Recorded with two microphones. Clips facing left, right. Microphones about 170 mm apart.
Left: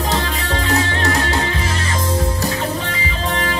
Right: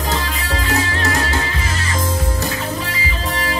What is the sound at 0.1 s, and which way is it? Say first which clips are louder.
Music: left 2 dB; 35° left (ahead or behind).